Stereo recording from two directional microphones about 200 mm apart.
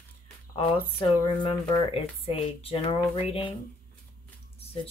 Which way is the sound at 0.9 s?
25° left (ahead or behind).